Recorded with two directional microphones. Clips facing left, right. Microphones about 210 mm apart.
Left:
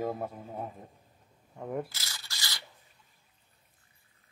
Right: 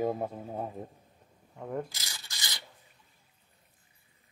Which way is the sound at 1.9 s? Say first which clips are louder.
Even; 15° right (ahead or behind).